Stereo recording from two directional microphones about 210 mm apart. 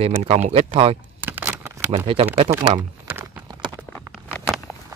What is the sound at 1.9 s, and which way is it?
Speech, 25° right (ahead or behind).